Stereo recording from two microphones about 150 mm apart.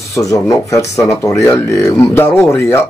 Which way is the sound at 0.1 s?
20° left (ahead or behind).